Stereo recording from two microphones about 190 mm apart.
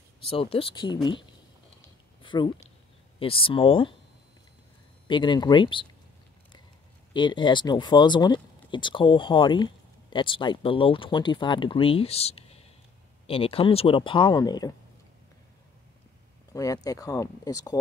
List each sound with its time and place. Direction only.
0.2 s speech: 30° left (ahead or behind)
2.2 s speech: 25° left (ahead or behind)
5.0 s speech: 25° left (ahead or behind)
7.2 s speech: 25° left (ahead or behind)
16.5 s speech: 20° left (ahead or behind)